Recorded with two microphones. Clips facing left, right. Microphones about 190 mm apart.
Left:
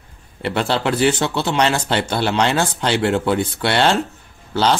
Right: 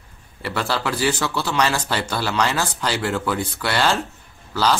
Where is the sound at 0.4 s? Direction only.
25° left (ahead or behind).